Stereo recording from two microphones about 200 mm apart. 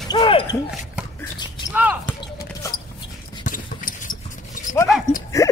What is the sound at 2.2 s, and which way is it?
Basketball bounce, 20° left (ahead or behind).